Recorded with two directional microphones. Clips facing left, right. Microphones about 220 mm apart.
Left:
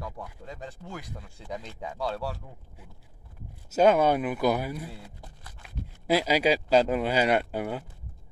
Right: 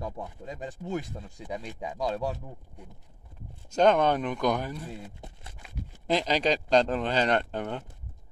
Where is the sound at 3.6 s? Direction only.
5° left (ahead or behind).